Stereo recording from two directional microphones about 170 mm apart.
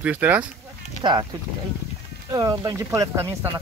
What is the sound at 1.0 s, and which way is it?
Speech, 25° right (ahead or behind).